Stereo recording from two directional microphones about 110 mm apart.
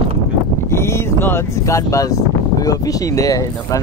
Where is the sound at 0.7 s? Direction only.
25° left (ahead or behind).